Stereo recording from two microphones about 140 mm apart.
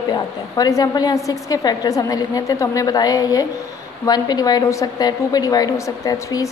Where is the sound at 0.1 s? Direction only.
25° left (ahead or behind).